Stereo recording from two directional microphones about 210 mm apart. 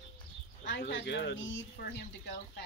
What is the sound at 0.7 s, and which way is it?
Speech, 60° left (ahead or behind).